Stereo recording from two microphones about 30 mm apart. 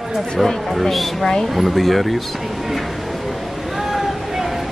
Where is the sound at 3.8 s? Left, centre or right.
Centre.